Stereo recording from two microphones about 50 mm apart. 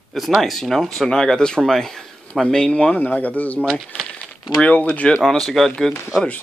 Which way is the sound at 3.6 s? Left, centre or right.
Centre.